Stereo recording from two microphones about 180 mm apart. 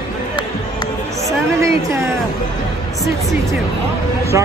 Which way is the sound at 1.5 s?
15° right (ahead or behind).